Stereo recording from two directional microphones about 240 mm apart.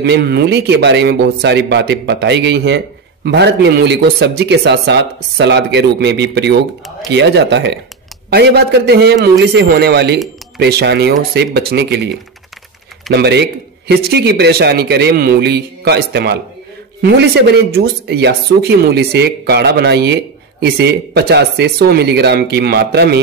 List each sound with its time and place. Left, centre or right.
0.0 s speech: right
13.1 s speech: right